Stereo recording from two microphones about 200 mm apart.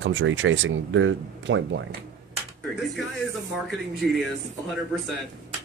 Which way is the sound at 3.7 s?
Centre (ahead or behind).